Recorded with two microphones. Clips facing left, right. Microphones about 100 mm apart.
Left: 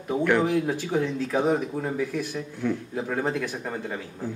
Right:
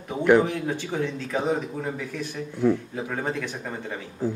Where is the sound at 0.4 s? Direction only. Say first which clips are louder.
Left 1 dB; 5° left (ahead or behind).